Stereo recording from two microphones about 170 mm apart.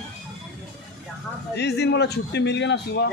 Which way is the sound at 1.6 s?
80° left.